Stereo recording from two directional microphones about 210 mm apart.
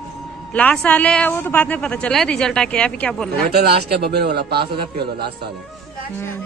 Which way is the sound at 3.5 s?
50° right (ahead or behind).